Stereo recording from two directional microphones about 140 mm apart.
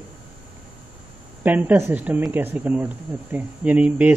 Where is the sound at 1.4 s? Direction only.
10° right (ahead or behind).